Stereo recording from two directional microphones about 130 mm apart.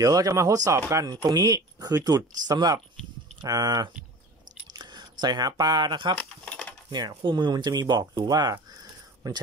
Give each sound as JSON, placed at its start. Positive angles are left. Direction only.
{"t": 0.0, "sound": "speech", "side_deg": -25}
{"t": 6.1, "sound": "a sound", "side_deg": 10}
{"t": 6.9, "sound": "speech", "side_deg": -35}